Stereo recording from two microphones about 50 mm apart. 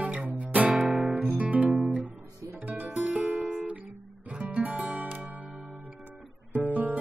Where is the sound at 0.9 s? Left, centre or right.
Centre.